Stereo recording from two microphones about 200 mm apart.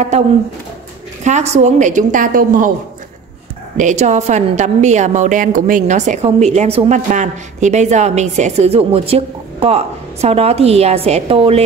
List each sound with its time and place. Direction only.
1.2 s a woman's voice: 35° right (ahead or behind)
3.7 s a woman's voice: 35° right (ahead or behind)